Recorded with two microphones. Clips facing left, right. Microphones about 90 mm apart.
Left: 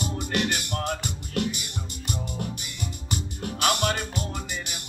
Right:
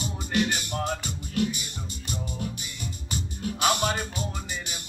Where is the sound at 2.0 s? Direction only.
55° left (ahead or behind).